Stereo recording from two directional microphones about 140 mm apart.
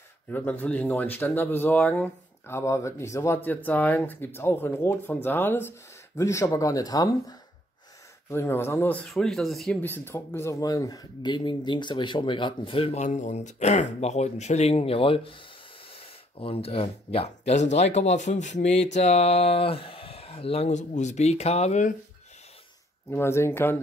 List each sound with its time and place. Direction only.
0.3 s speech: 15° left (ahead or behind)
9.8 s speech: 15° left (ahead or behind); by 21.9 s 55° left (ahead or behind)
23.0 s speech: 20° left (ahead or behind)